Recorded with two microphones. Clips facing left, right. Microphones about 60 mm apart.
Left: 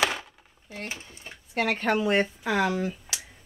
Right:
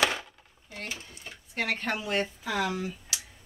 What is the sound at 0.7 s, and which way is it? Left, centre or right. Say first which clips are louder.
Speech: left 2 dB; left.